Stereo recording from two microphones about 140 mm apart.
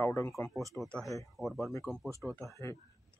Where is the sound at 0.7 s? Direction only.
5° left (ahead or behind).